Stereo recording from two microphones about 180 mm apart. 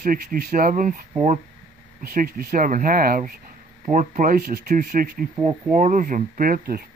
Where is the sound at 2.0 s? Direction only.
55° right (ahead or behind).